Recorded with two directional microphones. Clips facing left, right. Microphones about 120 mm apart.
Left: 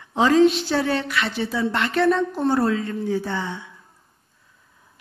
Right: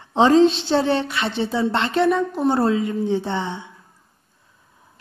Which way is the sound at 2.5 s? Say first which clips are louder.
Right 3 dB; 25° right (ahead or behind).